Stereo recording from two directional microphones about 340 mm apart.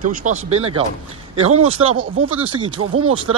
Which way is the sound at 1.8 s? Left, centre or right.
Right.